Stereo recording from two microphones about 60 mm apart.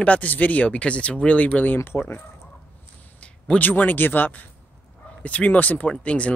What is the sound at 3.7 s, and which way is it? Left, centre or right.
Speech, left.